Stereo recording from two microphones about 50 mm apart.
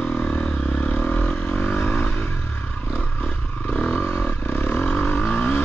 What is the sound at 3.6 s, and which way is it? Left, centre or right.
Vehicle, left.